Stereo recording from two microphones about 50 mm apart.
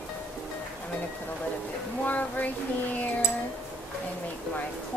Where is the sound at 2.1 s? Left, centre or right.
Left.